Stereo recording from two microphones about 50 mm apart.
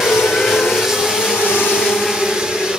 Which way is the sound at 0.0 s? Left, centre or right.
Centre.